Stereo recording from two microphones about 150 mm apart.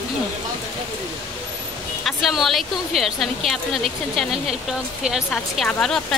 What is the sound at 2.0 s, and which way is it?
A woman's voice, centre (ahead or behind).